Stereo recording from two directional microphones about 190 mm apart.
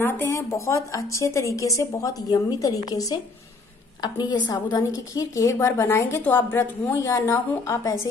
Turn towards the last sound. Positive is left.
turn(degrees=15)  # may be behind; listen again after turning